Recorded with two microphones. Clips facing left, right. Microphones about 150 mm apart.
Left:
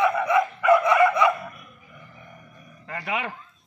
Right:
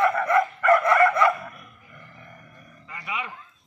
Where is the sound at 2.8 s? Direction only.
70° left (ahead or behind).